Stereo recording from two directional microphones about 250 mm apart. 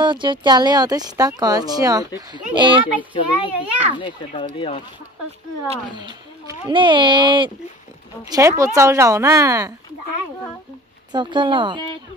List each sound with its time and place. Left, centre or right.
0.0 s speech: centre
3.4 s a child's voice: centre
5.9 s speech: centre
11.1 s speech: centre